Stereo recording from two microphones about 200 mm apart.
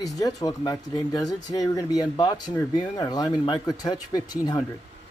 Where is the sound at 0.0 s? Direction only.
20° left (ahead or behind).